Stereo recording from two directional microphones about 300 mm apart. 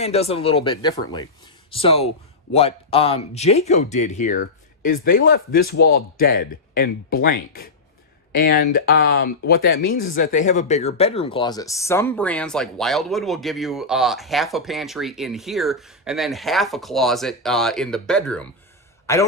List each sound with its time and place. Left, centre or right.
0.0 s a man's voice: centre